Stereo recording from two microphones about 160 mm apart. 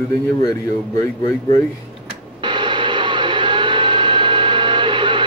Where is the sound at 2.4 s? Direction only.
30° right (ahead or behind).